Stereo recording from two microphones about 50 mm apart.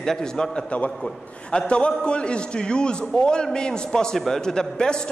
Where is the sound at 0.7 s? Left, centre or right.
Left.